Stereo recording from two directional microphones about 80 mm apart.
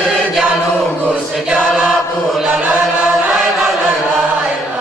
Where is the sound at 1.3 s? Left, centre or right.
Centre.